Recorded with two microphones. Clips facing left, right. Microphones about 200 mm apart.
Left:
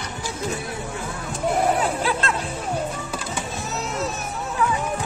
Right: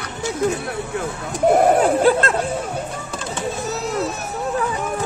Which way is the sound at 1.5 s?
50° right (ahead or behind).